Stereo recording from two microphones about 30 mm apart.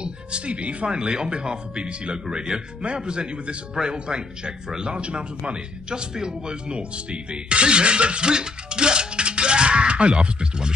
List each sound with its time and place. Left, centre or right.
0.0 s speech: right
0.9 s speech: right
6.7 s speech: right